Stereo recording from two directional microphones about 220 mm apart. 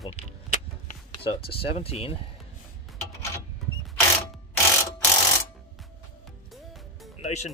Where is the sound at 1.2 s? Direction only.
25° left (ahead or behind).